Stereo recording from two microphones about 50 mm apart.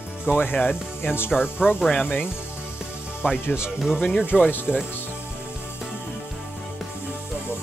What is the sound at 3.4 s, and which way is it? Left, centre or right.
Speech, left.